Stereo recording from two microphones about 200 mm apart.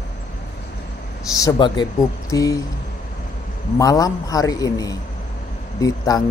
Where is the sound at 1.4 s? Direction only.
20° left (ahead or behind).